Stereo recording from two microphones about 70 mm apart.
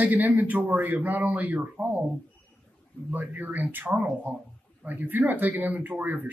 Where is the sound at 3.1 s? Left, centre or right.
Right.